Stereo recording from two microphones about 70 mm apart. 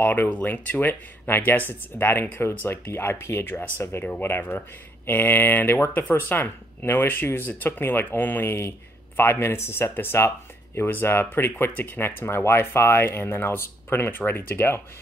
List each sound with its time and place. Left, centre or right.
0.0 s speech: left
3.5 s speech: left